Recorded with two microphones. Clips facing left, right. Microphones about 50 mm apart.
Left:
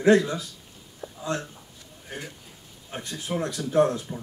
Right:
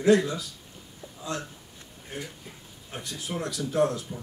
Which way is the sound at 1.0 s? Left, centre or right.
Left.